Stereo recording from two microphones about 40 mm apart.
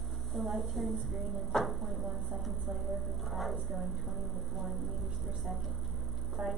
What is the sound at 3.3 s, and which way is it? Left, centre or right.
Speech, centre.